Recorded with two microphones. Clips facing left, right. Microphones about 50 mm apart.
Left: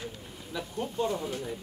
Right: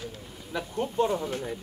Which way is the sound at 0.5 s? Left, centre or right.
Right.